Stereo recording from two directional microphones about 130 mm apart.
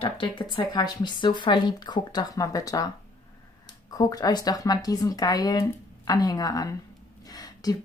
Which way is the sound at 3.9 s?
25° left (ahead or behind).